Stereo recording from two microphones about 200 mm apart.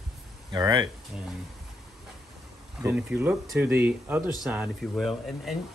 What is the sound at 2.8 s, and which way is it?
Speech, 10° right (ahead or behind).